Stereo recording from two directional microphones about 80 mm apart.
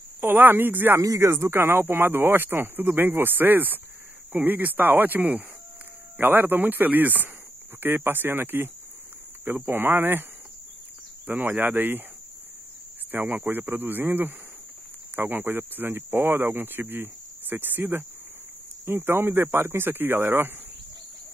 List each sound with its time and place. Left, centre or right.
0.2 s speech: right
1.0 s speech: right
11.2 s speech: right
13.1 s speech: right